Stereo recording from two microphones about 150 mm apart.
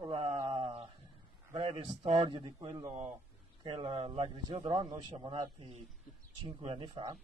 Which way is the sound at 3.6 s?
30° right (ahead or behind).